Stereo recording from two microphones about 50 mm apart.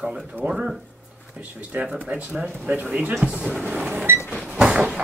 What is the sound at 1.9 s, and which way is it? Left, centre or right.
Speech, right.